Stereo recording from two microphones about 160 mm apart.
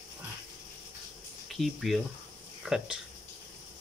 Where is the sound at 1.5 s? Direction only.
Centre (ahead or behind).